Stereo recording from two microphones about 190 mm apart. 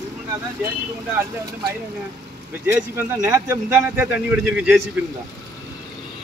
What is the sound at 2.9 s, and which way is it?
Speech, 10° right (ahead or behind).